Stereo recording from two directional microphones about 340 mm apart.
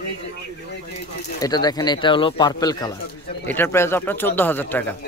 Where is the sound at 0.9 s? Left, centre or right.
Centre.